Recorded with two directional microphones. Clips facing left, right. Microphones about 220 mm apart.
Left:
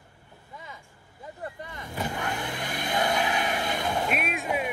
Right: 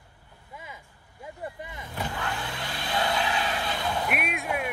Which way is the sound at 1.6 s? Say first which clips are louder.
Even; 20° right (ahead or behind).